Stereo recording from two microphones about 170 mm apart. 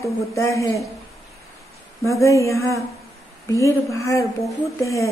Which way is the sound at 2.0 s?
20° left (ahead or behind).